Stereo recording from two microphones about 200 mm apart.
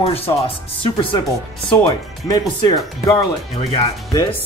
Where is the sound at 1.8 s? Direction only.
20° left (ahead or behind).